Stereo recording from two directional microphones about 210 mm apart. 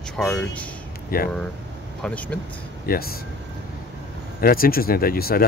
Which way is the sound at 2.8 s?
45° left (ahead or behind).